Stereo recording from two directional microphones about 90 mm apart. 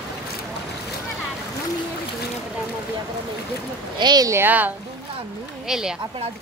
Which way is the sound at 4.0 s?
50° right (ahead or behind).